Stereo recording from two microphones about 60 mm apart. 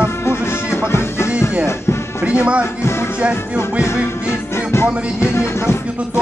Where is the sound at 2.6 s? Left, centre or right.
Left.